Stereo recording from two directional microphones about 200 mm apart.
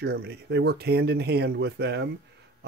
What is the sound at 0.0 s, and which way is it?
Speech, 55° right (ahead or behind).